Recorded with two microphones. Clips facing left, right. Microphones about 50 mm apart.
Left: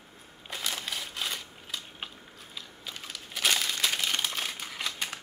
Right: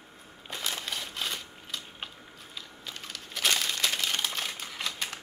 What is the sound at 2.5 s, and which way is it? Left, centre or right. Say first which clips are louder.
Crumpling: even; centre.